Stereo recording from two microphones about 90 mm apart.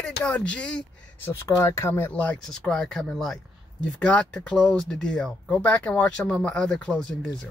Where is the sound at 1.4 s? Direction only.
30° left (ahead or behind).